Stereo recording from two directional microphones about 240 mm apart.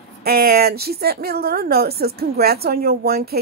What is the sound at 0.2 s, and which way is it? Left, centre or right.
A woman's voice, right.